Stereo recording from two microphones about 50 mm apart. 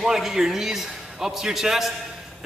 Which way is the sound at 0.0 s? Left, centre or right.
Centre.